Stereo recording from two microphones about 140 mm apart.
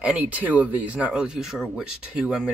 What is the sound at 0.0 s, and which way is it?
A man's voice, 10° right (ahead or behind).